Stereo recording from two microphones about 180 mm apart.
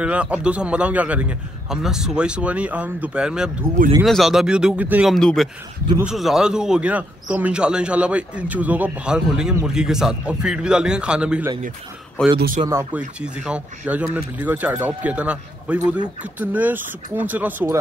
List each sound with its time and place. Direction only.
0.0 s speech: 5° right (ahead or behind)
12.6 s speech: 15° right (ahead or behind)